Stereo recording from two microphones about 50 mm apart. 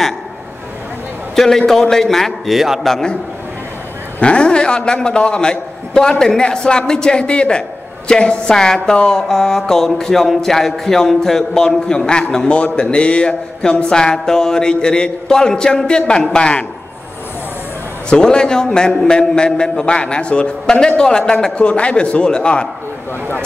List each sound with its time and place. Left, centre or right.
1.3 s a man's voice: centre
1.7 s music: centre
2.8 s a man's voice: centre
4.2 s music: left
18.1 s music: centre
21.3 s a man's voice: centre